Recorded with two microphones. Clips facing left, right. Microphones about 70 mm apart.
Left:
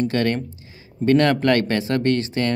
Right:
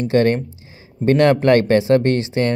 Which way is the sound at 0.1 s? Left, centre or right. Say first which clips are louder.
Right 6 dB; right.